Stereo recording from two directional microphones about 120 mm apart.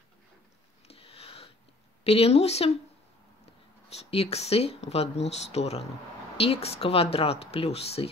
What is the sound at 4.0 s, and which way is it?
Speech, 60° left (ahead or behind).